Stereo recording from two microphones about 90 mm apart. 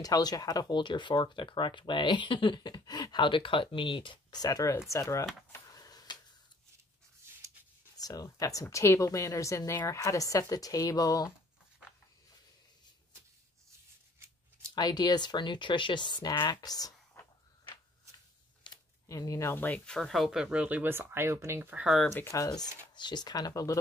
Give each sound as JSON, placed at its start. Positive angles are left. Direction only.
{"t": 0.0, "sound": "speech", "side_deg": 45}
{"t": 5.7, "sound": "a sound", "side_deg": 45}
{"t": 8.0, "sound": "speech", "side_deg": 40}
{"t": 14.8, "sound": "speech", "side_deg": 50}
{"t": 19.0, "sound": "speech", "side_deg": 40}
{"t": 19.5, "sound": "speech", "side_deg": 20}
{"t": 19.9, "sound": "speech", "side_deg": 0}
{"t": 22.1, "sound": "speech", "side_deg": 35}
{"t": 22.6, "sound": "speech", "side_deg": 55}